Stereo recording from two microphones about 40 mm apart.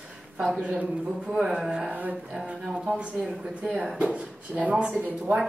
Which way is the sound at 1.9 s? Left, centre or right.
Right.